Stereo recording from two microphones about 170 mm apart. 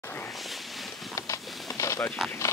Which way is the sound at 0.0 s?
10° left (ahead or behind).